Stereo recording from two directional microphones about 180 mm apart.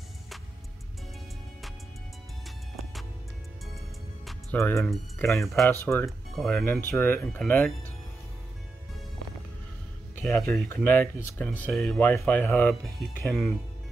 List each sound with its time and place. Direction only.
2.4 s music: centre (ahead or behind)
4.7 s speech: centre (ahead or behind)
5.7 s speech: 10° left (ahead or behind)
6.0 s speech: centre (ahead or behind)
6.5 s speech: 10° left (ahead or behind)
10.1 s music: centre (ahead or behind)
10.7 s speech: 15° left (ahead or behind)